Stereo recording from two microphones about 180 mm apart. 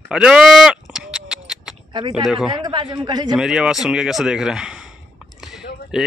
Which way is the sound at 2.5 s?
25° right (ahead or behind).